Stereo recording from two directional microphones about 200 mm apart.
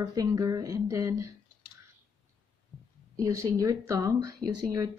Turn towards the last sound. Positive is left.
turn(degrees=-20)  # may be behind; listen again after turning